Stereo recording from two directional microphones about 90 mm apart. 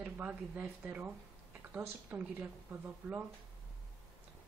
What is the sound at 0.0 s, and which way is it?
A woman's voice, 15° right (ahead or behind).